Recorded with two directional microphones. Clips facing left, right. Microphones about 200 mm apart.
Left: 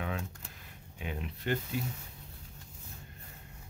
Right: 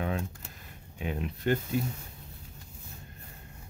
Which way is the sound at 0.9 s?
45° right (ahead or behind).